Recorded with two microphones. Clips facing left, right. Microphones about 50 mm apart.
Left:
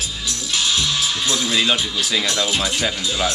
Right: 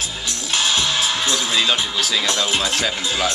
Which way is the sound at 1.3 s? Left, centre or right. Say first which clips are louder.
Even; right.